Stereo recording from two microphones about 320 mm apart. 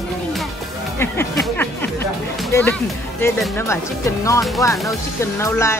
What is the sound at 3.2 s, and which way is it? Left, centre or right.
Speech, centre.